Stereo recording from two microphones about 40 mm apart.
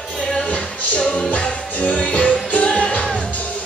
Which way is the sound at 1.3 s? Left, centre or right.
Left.